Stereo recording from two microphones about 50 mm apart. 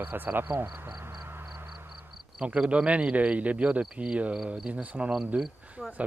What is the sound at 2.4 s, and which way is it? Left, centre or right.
A man's voice, centre.